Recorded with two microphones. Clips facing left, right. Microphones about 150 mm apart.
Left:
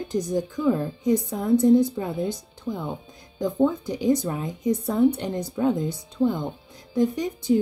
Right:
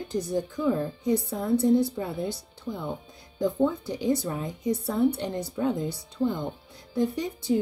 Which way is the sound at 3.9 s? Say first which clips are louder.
Left 4 dB; 15° left (ahead or behind).